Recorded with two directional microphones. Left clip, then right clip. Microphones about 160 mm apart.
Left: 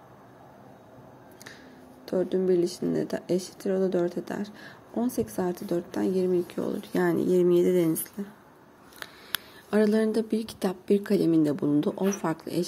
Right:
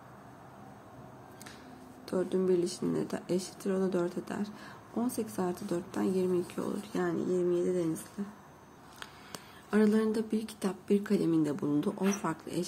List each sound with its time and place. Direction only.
2.0 s speech: 20° left (ahead or behind)
6.9 s speech: 45° left (ahead or behind)
7.3 s speech: 65° left (ahead or behind)
9.7 s speech: 30° left (ahead or behind)